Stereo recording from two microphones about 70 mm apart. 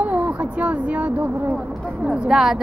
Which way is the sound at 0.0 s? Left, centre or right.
Centre.